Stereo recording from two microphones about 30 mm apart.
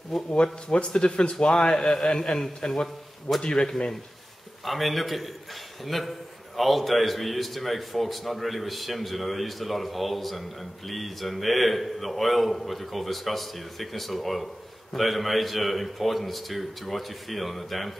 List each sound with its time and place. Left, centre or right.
0.1 s a man's voice: centre
0.8 s speech: left
1.7 s a man's voice: centre
3.3 s a man's voice: left
4.6 s a man's voice: centre